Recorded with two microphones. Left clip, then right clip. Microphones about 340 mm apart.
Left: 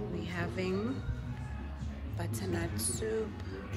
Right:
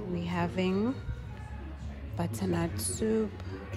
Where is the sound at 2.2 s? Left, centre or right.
Centre.